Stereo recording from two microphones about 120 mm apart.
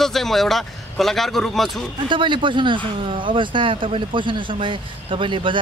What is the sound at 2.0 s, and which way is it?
Speech, 45° right (ahead or behind).